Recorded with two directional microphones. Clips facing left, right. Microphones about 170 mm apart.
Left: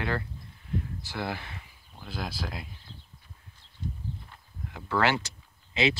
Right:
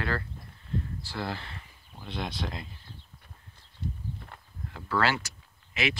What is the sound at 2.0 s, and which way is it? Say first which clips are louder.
Speech: right 1 dB; centre (ahead or behind).